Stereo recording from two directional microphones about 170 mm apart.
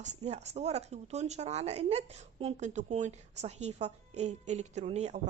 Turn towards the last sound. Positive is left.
turn(degrees=-40)  # may be behind; listen again after turning